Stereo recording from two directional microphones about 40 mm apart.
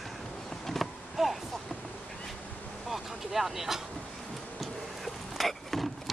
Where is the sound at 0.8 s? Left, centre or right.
Centre.